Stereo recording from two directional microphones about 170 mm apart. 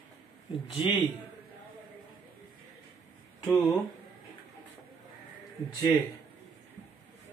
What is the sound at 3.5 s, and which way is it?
Speech, 20° left (ahead or behind).